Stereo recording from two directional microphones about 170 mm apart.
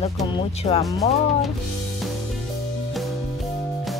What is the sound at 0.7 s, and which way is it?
Speech, 30° left (ahead or behind).